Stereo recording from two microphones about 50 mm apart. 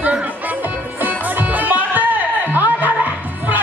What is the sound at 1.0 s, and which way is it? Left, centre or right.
Music, right.